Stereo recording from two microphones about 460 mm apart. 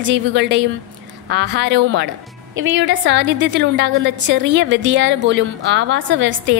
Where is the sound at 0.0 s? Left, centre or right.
Right.